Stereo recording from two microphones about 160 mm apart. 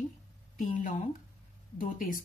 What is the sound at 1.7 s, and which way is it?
Speech, 60° left (ahead or behind).